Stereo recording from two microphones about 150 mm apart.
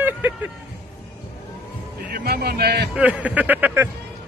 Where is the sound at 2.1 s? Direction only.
90° right.